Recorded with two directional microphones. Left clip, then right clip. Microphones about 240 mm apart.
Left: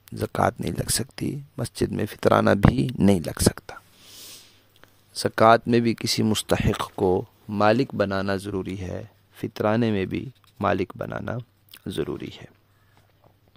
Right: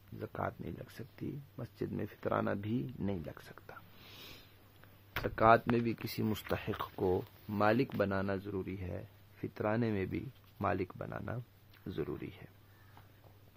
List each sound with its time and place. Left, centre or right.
0.2 s speech: left
5.2 s speech: left